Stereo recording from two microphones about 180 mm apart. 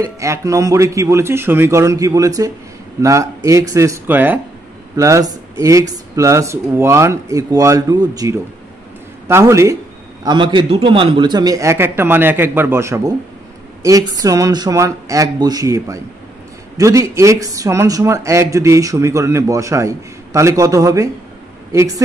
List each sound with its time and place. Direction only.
0.0 s a man's voice: 15° right (ahead or behind)